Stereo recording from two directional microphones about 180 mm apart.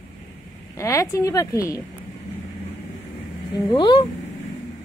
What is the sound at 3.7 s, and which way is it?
Speech, 25° left (ahead or behind).